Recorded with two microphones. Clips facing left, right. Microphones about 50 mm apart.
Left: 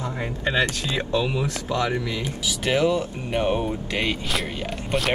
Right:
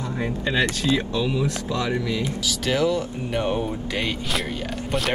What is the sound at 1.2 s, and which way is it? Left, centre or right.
Speech, left.